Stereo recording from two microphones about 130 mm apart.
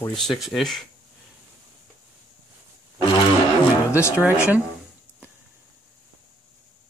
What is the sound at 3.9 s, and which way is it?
Speech, 20° left (ahead or behind).